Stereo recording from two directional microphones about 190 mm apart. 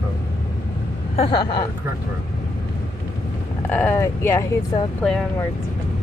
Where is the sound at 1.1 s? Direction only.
25° left (ahead or behind).